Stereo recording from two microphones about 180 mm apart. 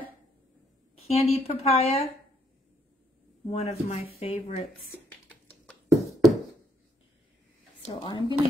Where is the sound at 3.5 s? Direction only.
35° left (ahead or behind).